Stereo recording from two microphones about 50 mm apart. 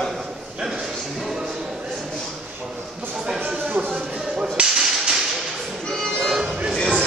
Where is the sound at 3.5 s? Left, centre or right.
Right.